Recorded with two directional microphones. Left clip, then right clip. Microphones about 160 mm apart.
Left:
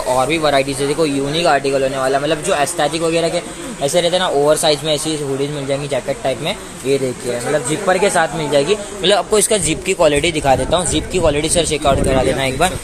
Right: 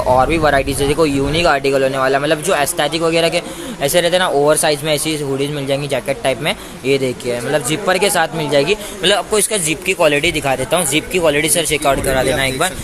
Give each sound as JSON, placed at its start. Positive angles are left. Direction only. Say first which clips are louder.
{"t": 0.1, "sound": "speech", "louder": "right 2 dB", "side_deg": -10}
{"t": 0.4, "sound": "speech", "louder": "right 1 dB", "side_deg": -40}
{"t": 0.8, "sound": "speech", "louder": "right 2 dB", "side_deg": -5}
{"t": 1.5, "sound": "speech", "louder": "left 1 dB", "side_deg": -40}
{"t": 2.9, "sound": "speech", "louder": "right 2 dB", "side_deg": 0}
{"t": 4.1, "sound": "speech", "louder": "right 1 dB", "side_deg": -35}
{"t": 7.5, "sound": "speech", "louder": "even", "side_deg": -25}
{"t": 9.0, "sound": "a man's voice", "louder": "left 1 dB", "side_deg": 15}